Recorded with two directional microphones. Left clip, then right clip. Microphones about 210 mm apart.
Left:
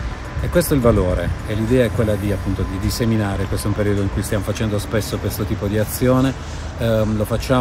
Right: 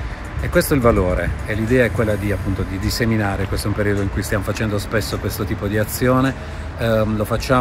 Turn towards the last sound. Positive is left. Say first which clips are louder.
# right 1 dB
turn(degrees=5)  # may be behind; listen again after turning